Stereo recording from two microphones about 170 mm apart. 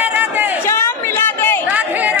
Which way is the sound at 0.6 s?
15° left (ahead or behind).